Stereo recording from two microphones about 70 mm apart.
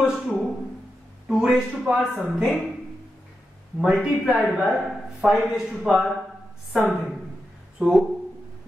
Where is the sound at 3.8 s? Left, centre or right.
Centre.